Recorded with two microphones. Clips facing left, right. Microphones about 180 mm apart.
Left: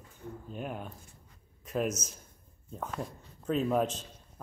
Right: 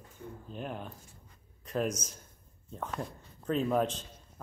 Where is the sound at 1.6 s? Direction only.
5° left (ahead or behind).